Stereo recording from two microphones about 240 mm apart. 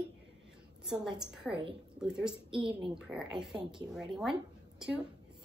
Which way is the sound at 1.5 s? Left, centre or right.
Right.